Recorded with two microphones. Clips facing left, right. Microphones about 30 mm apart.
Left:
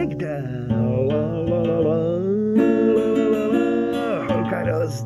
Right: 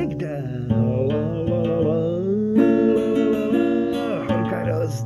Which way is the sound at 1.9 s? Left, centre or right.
Left.